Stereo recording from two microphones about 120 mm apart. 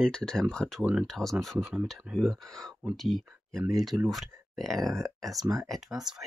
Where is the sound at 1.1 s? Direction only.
5° left (ahead or behind).